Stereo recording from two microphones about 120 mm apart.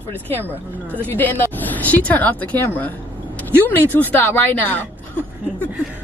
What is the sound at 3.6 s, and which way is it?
Speech, 15° left (ahead or behind).